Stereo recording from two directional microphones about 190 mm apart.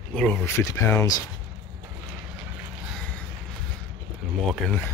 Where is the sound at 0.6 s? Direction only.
15° left (ahead or behind).